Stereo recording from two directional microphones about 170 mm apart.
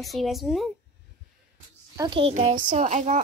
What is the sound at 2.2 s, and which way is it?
A child's voice, 40° right (ahead or behind).